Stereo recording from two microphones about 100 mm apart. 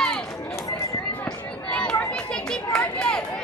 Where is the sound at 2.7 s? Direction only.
10° left (ahead or behind).